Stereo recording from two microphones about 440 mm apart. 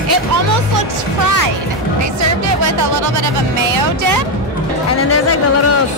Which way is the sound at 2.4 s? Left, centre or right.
Right.